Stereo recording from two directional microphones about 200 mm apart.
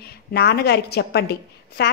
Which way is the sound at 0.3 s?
55° left (ahead or behind).